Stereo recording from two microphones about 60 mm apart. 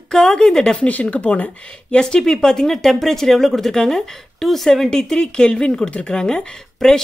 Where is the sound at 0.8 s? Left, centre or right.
Left.